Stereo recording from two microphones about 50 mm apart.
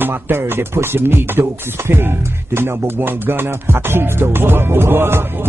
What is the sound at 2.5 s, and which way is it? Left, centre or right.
Music, right.